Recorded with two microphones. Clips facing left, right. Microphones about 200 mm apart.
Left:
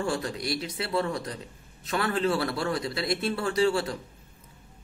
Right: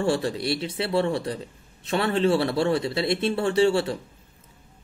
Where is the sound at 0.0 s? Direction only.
30° right (ahead or behind).